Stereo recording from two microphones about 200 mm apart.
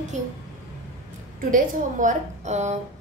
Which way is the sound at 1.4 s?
40° right (ahead or behind).